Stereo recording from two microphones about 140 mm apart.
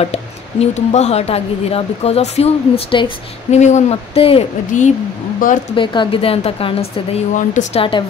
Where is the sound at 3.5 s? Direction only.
55° left (ahead or behind).